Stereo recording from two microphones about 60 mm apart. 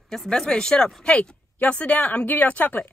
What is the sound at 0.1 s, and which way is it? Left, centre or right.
Speech, centre.